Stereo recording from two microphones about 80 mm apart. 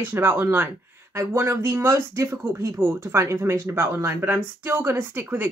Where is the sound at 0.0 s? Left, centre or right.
Right.